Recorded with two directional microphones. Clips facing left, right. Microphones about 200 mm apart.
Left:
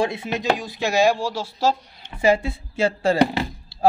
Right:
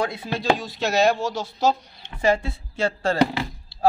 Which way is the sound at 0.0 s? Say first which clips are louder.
Left 2 dB; 25° left (ahead or behind).